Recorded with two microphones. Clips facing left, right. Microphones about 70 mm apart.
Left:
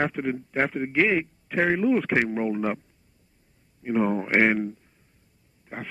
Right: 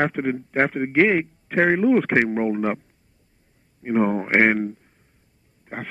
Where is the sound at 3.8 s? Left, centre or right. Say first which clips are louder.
Right 3 dB; right.